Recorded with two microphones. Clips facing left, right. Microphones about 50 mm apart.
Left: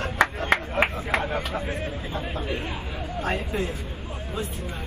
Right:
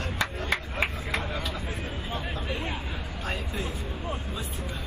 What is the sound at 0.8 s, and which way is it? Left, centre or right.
Vehicle, left.